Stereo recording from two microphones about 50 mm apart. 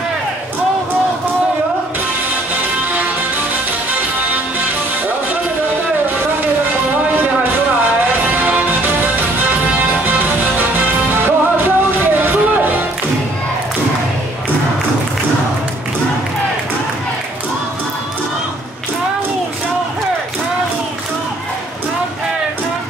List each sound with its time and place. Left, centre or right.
3.9 s music: right
6.4 s music: right